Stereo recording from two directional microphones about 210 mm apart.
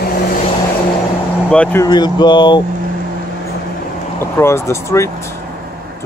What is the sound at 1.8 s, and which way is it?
Speech, 20° left (ahead or behind).